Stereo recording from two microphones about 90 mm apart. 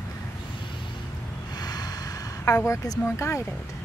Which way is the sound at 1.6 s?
50° left (ahead or behind).